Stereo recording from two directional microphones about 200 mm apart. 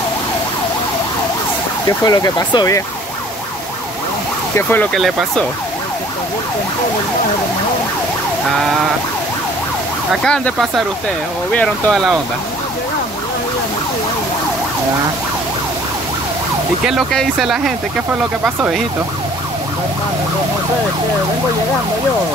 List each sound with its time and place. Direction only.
1.9 s speech: 20° left (ahead or behind)
4.6 s speech: 10° left (ahead or behind)
10.1 s speech: 5° left (ahead or behind)
16.8 s speech: centre (ahead or behind)